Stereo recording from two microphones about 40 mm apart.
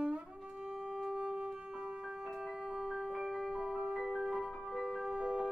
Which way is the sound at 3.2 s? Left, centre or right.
Centre.